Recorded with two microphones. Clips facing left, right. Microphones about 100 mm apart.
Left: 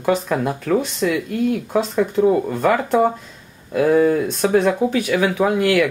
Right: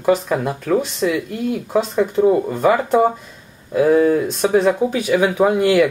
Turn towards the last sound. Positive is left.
turn(degrees=-20)  # may be behind; listen again after turning